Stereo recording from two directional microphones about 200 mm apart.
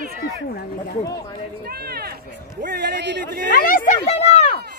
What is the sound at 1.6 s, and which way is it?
Speech, 50° right (ahead or behind).